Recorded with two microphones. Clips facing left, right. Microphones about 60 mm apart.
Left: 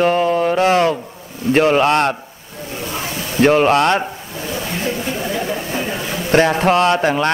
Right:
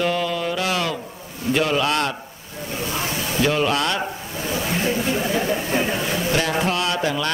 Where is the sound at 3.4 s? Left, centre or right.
Left.